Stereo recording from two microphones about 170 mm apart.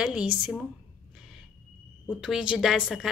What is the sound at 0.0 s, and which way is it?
Speech, 5° right (ahead or behind).